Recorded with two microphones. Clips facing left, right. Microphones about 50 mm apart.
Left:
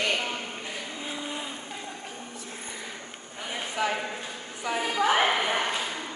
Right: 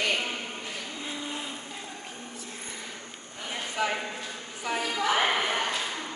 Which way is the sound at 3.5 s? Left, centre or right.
Centre.